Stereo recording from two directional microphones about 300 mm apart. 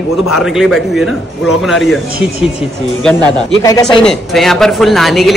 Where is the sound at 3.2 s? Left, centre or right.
Centre.